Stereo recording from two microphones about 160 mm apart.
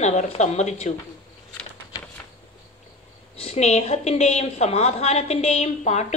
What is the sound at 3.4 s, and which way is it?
A woman's voice, 45° left (ahead or behind).